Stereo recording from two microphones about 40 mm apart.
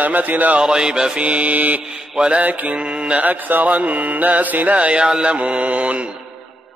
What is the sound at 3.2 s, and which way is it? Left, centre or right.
Mantra, right.